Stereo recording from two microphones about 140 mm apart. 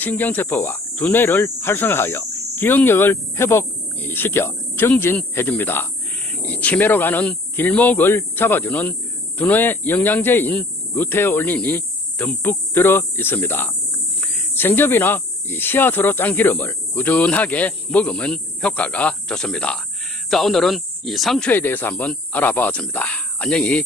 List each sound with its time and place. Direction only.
0.0 s speech: 10° left (ahead or behind)
21.5 s speech: 15° left (ahead or behind)